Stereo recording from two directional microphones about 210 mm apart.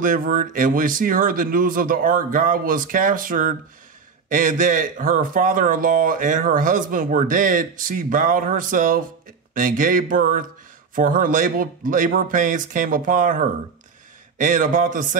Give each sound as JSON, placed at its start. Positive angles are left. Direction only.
{"t": 0.0, "sound": "speech", "side_deg": -40}